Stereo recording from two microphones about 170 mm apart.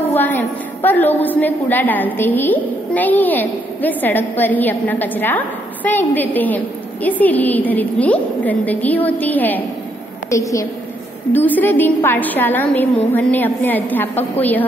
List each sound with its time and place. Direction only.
0.1 s a woman's voice: 10° left (ahead or behind)